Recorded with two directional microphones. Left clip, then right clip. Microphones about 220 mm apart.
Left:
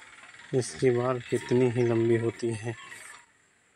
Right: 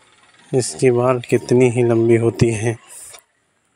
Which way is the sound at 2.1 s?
35° right (ahead or behind).